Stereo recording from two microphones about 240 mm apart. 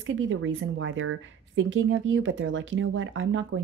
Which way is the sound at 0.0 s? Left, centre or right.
Right.